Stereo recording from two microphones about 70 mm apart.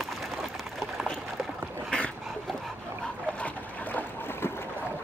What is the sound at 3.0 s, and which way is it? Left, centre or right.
Dog, left.